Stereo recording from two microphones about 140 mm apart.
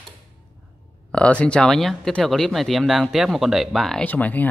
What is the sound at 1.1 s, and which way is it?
Speech, 10° left (ahead or behind).